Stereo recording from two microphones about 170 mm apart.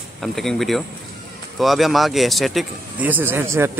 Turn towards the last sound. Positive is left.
turn(degrees=-15)  # may be behind; listen again after turning